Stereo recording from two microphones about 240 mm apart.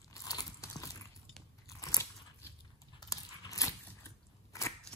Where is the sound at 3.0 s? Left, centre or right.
Centre.